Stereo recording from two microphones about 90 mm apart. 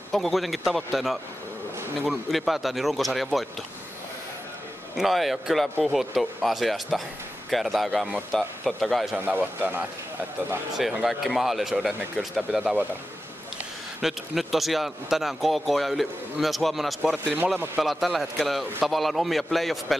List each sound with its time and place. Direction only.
0.1 s speech: centre (ahead or behind)
4.9 s speech: centre (ahead or behind)
9.1 s speech: 20° right (ahead or behind)
10.8 s speech: centre (ahead or behind)
14.0 s speech: centre (ahead or behind)